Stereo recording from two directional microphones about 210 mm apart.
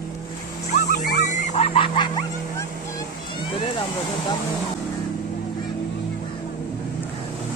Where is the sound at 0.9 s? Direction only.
35° left (ahead or behind).